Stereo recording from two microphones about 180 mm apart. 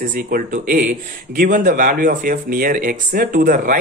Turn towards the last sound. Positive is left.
turn(degrees=-50)  # may be behind; listen again after turning